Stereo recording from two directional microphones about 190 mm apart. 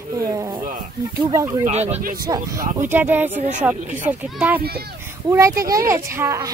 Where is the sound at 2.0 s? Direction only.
50° right (ahead or behind).